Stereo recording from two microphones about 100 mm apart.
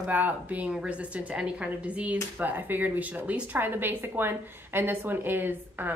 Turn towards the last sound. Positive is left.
turn(degrees=-20)  # may be behind; listen again after turning